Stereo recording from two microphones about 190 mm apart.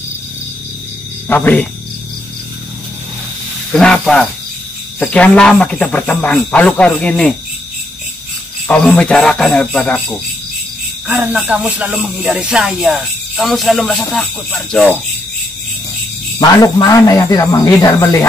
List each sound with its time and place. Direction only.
1.3 s speech: 10° left (ahead or behind)
3.7 s speech: 5° left (ahead or behind)
8.6 s speech: 5° left (ahead or behind)
11.1 s speech: 10° right (ahead or behind)
16.3 s a man's voice: 20° left (ahead or behind)